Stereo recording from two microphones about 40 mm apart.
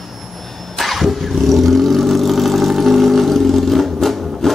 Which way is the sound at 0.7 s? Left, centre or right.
Centre.